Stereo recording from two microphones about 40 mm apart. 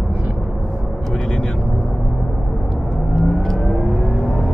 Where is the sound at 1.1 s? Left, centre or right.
Left.